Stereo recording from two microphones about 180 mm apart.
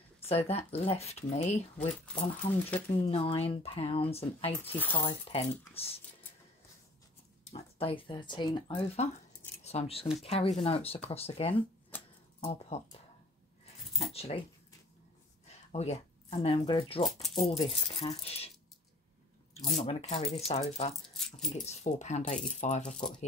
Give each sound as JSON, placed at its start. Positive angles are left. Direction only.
{"t": 0.2, "sound": "speech", "side_deg": 35}
{"t": 3.0, "sound": "speech", "side_deg": 30}
{"t": 4.7, "sound": "speech", "side_deg": 10}
{"t": 5.0, "sound": "speech", "side_deg": 30}
{"t": 7.5, "sound": "speech", "side_deg": 30}
{"t": 14.1, "sound": "speech", "side_deg": 35}
{"t": 15.7, "sound": "a sound", "side_deg": 35}
{"t": 16.4, "sound": "speech", "side_deg": 30}
{"t": 17.0, "sound": "speech", "side_deg": 0}
{"t": 17.5, "sound": "speech", "side_deg": 30}
{"t": 19.8, "sound": "speech", "side_deg": 35}
{"t": 21.2, "sound": "speech", "side_deg": 0}
{"t": 21.6, "sound": "speech", "side_deg": 40}
{"t": 22.5, "sound": "coin", "side_deg": 40}